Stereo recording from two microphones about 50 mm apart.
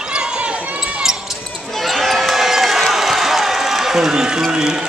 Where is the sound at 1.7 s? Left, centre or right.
Centre.